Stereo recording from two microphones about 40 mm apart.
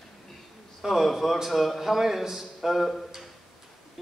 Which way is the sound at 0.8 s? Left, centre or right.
Centre.